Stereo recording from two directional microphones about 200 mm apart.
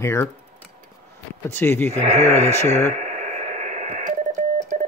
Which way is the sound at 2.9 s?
40° right (ahead or behind).